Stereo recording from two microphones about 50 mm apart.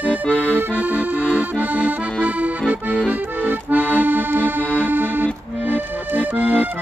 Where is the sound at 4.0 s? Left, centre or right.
Right.